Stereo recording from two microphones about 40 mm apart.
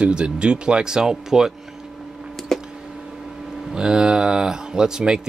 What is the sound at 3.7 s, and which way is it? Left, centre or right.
Speech, right.